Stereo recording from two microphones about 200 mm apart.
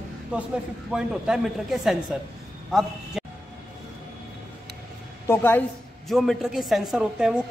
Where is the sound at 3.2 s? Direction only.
5° right (ahead or behind).